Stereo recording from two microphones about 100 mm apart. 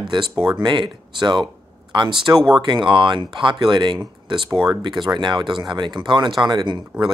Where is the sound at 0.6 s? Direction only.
50° right (ahead or behind).